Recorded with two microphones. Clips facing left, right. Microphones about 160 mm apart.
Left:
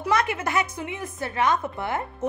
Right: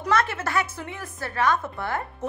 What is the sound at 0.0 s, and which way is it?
A woman's voice, 15° left (ahead or behind).